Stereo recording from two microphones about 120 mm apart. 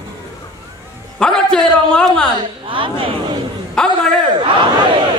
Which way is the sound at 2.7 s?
45° right (ahead or behind).